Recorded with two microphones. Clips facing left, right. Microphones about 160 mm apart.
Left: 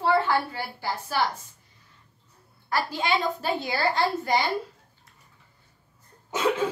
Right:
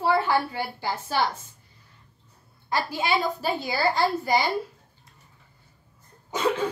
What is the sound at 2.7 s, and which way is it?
A woman's voice, 10° right (ahead or behind).